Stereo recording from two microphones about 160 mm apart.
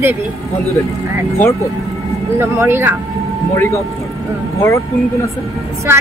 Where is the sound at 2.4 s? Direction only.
15° right (ahead or behind).